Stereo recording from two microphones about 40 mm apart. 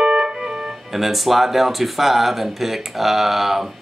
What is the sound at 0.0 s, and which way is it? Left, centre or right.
Organ, centre.